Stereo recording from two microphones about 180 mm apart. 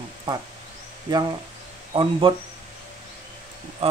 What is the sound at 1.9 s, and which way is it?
Speech, 25° right (ahead or behind).